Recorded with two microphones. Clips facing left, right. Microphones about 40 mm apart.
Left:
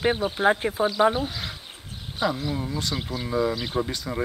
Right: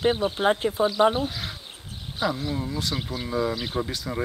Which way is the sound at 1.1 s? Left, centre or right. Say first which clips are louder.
Even; centre.